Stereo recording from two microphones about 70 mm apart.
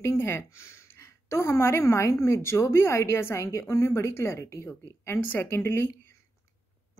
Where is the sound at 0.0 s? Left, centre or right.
Left.